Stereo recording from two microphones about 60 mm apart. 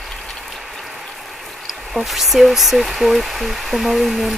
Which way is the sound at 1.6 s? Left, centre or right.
Centre.